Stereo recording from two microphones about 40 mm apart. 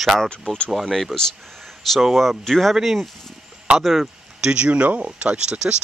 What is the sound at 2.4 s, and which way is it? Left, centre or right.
Speech, centre.